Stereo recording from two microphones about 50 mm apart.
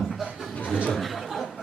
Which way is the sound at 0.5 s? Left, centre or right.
Left.